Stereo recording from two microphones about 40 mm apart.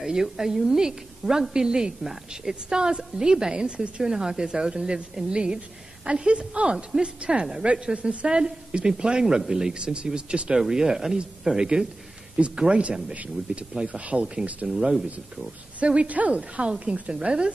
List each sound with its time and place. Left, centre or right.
0.0 s a woman's voice: centre
4.0 s a woman's voice: centre; by 8.3 s right
8.3 s a woman's voice: centre
10.6 s a woman's voice: centre
12.4 s a woman's voice: right
13.1 s speech: right
14.8 s a woman's voice: centre
15.8 s a woman's voice: right
17.1 s a woman's voice: right